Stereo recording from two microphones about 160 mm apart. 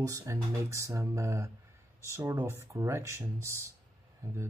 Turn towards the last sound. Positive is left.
turn(degrees=-20)  # may be behind; listen again after turning